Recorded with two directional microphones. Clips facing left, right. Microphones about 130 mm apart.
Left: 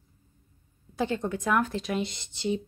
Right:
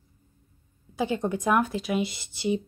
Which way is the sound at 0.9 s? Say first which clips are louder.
Right 2 dB; 10° right (ahead or behind).